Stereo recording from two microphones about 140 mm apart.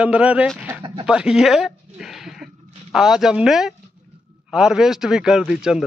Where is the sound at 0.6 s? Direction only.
15° right (ahead or behind).